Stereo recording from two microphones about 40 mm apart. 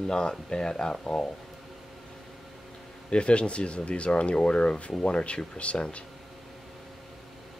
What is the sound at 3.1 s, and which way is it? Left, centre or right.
Speech, left.